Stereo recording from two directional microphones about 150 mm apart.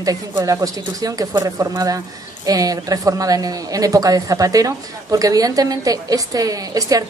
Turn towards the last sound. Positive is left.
turn(degrees=-25)  # may be behind; listen again after turning